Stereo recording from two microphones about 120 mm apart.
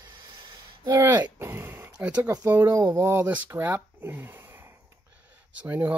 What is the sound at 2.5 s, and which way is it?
Speech, 15° right (ahead or behind).